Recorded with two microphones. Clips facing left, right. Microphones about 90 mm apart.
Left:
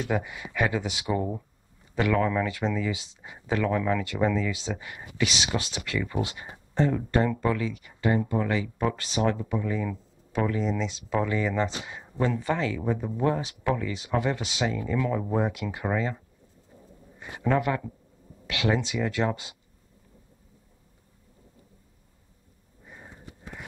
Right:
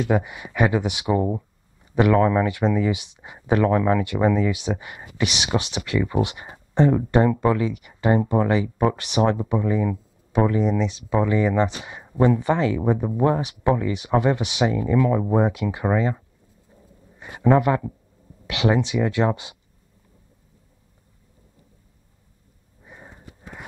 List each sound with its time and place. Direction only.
0.0 s speech: 15° right (ahead or behind)
2.1 s speech: 30° right (ahead or behind)
2.4 s speech: 15° right (ahead or behind); by 4.0 s 30° right (ahead or behind)
4.0 s speech: 15° right (ahead or behind)
8.0 s speech: 30° right (ahead or behind)
15.5 s speech: 10° right (ahead or behind)
17.2 s a man's voice: 20° right (ahead or behind)